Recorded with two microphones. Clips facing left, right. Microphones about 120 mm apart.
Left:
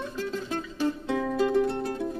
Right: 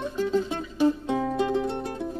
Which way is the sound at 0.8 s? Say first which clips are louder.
Right 5 dB; 15° right (ahead or behind).